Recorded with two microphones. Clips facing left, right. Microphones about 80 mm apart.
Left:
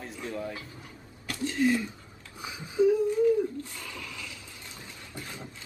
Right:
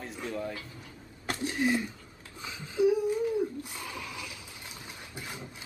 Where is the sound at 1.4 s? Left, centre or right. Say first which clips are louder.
Left 3 dB; right.